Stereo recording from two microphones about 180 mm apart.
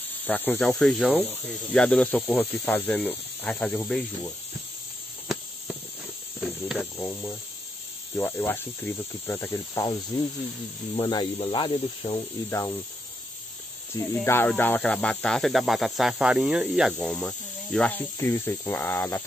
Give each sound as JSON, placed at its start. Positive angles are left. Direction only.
{"t": 0.3, "sound": "speech", "side_deg": 10}
{"t": 6.4, "sound": "cricket", "side_deg": 0}
{"t": 7.0, "sound": "speech", "side_deg": 15}
{"t": 11.0, "sound": "speech", "side_deg": 25}
{"t": 12.4, "sound": "speech", "side_deg": 15}
{"t": 13.9, "sound": "speech", "side_deg": 15}